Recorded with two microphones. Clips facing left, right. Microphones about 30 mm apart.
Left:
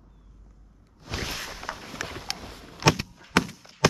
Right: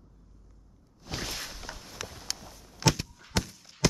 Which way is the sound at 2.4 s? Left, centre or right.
Left.